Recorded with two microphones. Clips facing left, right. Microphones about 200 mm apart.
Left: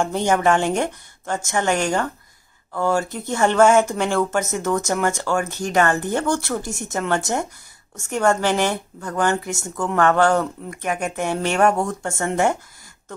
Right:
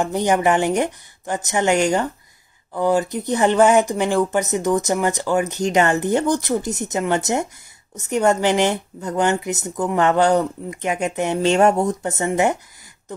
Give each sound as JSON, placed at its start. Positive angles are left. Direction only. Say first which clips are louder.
{"t": 0.0, "sound": "speech", "louder": "right 1 dB", "side_deg": -15}